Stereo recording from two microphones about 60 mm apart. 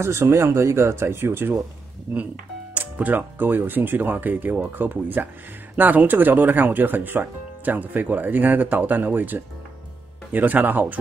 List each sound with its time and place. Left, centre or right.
0.0 s speech: right
2.7 s speech: right